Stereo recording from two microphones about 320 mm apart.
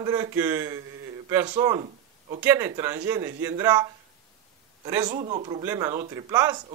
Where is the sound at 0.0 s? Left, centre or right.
Centre.